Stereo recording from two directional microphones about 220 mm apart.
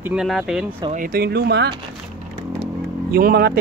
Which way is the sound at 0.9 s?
40° right (ahead or behind).